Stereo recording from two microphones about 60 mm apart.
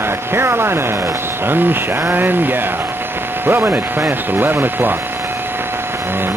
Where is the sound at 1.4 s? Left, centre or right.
Right.